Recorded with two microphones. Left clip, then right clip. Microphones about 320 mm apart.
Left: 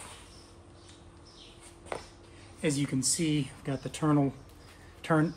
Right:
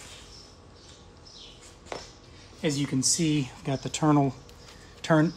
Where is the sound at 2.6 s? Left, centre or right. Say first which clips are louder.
Right 3 dB; centre.